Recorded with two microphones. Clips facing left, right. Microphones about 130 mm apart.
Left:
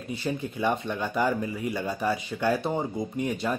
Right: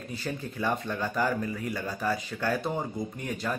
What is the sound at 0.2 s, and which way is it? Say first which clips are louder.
Speech: left 4 dB; 20° left (ahead or behind).